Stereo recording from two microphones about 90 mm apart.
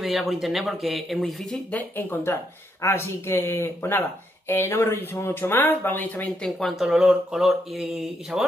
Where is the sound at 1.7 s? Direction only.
20° left (ahead or behind).